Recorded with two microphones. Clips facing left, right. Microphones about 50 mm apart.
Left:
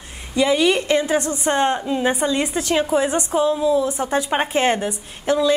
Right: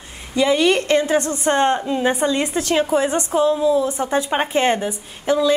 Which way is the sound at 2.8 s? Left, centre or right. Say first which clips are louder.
Right 1 dB; centre.